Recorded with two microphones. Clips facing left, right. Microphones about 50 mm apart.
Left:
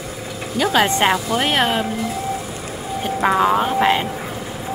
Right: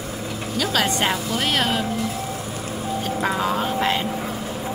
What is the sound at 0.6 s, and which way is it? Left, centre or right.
Speech, left.